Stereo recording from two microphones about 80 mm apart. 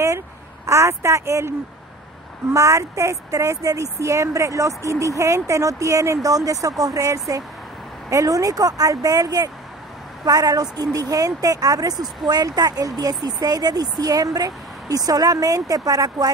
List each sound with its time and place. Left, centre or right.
0.7 s a woman's voice: right
2.5 s a woman's voice: right